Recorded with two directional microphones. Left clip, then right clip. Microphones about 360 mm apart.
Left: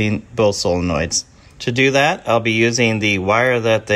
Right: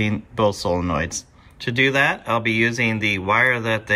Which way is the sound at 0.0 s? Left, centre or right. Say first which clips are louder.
Left 4 dB; centre.